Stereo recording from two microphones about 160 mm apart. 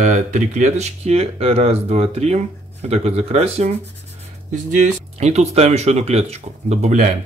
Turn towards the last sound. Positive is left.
turn(degrees=-50)  # may be behind; listen again after turning